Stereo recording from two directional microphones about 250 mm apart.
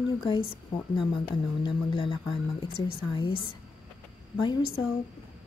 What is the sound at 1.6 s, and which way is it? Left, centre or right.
A woman's voice, centre.